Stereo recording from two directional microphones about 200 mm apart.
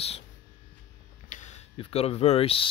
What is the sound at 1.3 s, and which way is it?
Speech, 35° left (ahead or behind).